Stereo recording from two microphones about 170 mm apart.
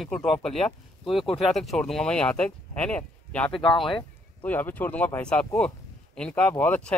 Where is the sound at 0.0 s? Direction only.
5° left (ahead or behind).